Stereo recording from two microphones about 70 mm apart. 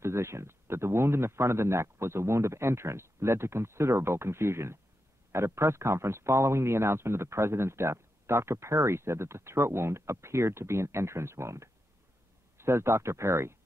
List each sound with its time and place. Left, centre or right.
0.0 s speech: right